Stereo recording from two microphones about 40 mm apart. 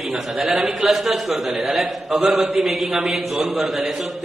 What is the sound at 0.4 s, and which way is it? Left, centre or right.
A man's voice, centre.